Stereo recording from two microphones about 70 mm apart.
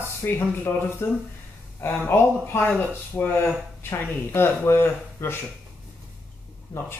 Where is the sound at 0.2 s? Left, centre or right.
Left.